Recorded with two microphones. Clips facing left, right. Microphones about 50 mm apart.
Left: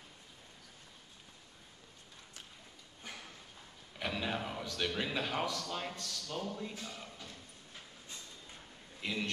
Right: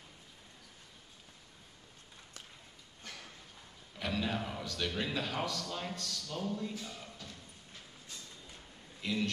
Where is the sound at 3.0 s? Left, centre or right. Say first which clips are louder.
Left 1 dB; centre.